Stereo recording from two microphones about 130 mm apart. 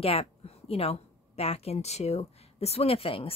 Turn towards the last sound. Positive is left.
turn(degrees=45)  # may be behind; listen again after turning